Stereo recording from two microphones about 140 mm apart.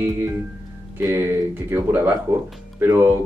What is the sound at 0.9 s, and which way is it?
Speech, 15° right (ahead or behind).